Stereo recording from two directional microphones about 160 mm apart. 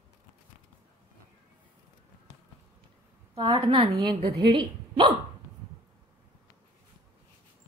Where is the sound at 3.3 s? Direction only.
30° right (ahead or behind).